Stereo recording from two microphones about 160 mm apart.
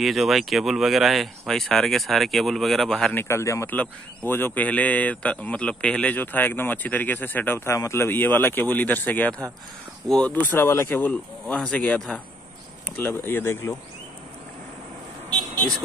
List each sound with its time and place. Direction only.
0.0 s a man's voice: centre (ahead or behind); by 13.7 s 15° left (ahead or behind)
15.2 s vehicle: 25° right (ahead or behind)